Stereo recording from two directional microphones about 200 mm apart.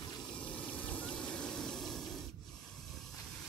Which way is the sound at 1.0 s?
5° left (ahead or behind).